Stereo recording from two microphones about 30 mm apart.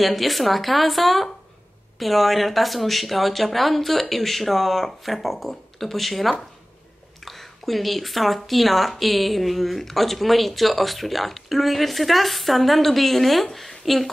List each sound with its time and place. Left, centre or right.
0.0 s a woman's voice: centre